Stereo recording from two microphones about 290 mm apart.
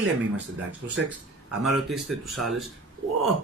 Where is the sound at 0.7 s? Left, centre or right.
Right.